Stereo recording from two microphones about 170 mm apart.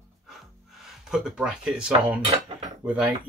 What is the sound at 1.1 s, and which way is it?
Speech, 5° right (ahead or behind).